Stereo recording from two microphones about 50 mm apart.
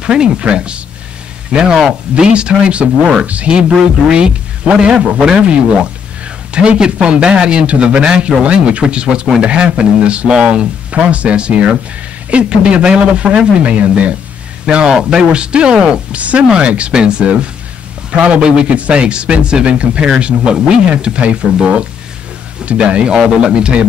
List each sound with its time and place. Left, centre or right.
0.0 s a man's voice: centre
16.2 s a man's voice: right